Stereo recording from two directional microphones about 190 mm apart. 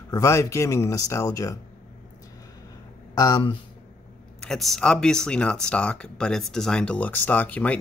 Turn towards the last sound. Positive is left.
turn(degrees=10)  # may be behind; listen again after turning